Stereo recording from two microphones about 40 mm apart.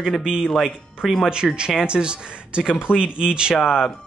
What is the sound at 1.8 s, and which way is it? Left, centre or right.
Speech, right.